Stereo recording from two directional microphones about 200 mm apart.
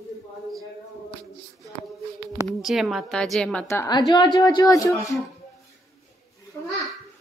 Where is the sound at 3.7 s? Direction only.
15° left (ahead or behind).